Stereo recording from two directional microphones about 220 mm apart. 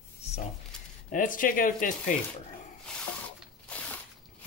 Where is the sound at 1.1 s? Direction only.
40° left (ahead or behind).